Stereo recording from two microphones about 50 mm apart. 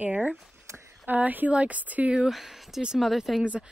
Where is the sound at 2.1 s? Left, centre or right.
Centre.